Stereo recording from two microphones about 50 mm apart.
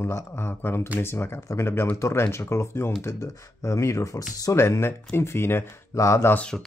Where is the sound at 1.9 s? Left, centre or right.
Left.